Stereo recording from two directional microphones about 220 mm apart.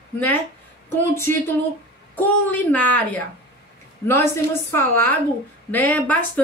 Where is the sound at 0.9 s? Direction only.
10° left (ahead or behind).